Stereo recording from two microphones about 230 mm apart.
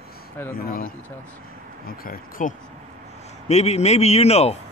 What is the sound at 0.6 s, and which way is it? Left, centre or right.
Speech, left.